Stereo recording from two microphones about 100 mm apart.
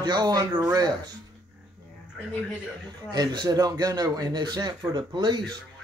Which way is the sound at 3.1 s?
45° right (ahead or behind).